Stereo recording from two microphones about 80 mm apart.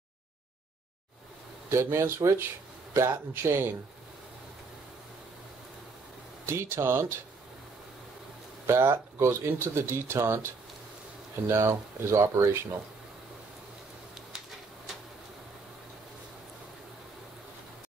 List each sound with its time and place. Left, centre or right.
1.7 s speech: right
6.4 s speech: right
8.6 s speech: right